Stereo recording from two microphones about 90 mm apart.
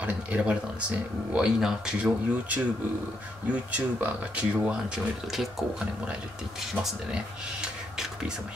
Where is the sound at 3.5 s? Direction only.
15° right (ahead or behind).